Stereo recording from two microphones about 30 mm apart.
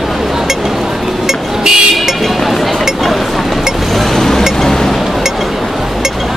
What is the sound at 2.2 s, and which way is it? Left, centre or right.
Chink, centre.